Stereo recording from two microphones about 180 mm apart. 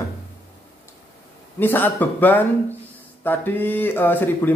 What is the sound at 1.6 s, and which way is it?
Speech, 10° left (ahead or behind).